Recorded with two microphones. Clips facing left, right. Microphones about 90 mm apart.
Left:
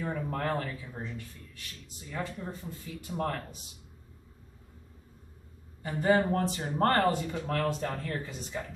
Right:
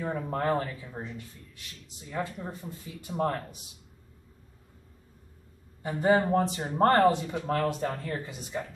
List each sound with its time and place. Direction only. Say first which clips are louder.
0.0 s a man's voice: right 3 dB; 20° right (ahead or behind)
5.8 s a man's voice: right 2 dB; 20° right (ahead or behind)